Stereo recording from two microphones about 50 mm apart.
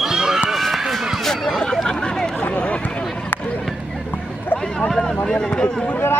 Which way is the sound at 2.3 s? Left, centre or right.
Left.